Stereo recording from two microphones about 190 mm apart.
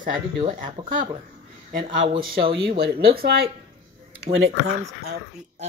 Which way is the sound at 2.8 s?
55° right (ahead or behind).